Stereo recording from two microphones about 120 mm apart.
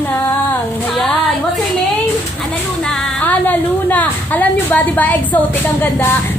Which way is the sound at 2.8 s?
15° left (ahead or behind).